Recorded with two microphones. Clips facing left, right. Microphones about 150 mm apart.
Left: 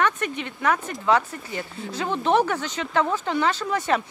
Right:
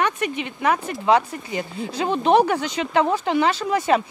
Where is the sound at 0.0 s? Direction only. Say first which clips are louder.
Right 1 dB; 10° right (ahead or behind).